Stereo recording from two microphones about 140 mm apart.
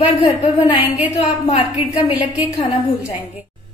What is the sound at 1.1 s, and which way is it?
Speech, 55° left (ahead or behind).